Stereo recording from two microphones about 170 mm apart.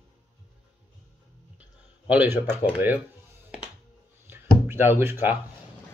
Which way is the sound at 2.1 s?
10° right (ahead or behind).